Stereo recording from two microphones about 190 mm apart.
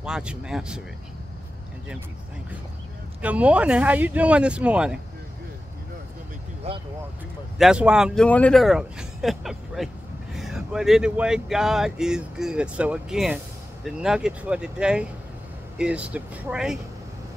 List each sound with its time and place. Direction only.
0.0 s speech: 5° right (ahead or behind)
3.2 s speech: 5° right (ahead or behind)
6.7 s speech: 30° right (ahead or behind)
7.5 s speech: 5° right (ahead or behind)